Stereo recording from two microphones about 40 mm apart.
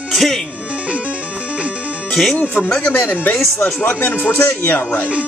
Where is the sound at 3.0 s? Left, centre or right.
Left.